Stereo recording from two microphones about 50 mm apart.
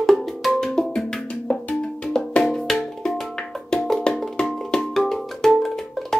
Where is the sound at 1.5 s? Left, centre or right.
Centre.